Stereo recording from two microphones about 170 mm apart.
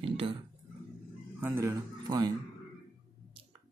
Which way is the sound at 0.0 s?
35° right (ahead or behind).